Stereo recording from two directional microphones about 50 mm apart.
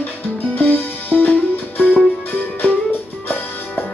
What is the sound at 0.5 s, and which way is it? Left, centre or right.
Music, left.